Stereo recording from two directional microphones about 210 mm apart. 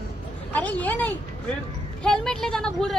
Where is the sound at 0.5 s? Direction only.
5° left (ahead or behind).